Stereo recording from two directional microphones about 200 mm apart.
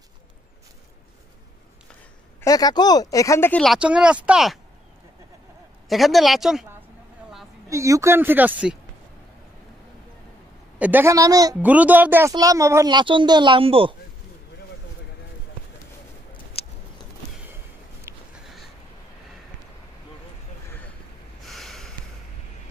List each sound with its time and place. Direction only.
2.4 s speech: 20° left (ahead or behind); by 4.6 s 5° right (ahead or behind)
5.9 s speech: centre (ahead or behind)
7.7 s speech: 15° right (ahead or behind)
10.8 s speech: 10° right (ahead or behind); by 13.9 s 25° right (ahead or behind)
16.6 s a sound: 30° left (ahead or behind)
18.1 s a sound: 15° right (ahead or behind)
21.5 s snort: centre (ahead or behind)